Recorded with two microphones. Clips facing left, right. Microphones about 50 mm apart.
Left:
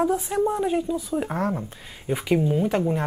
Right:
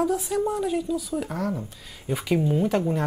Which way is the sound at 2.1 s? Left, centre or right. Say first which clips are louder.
Left 2 dB; centre.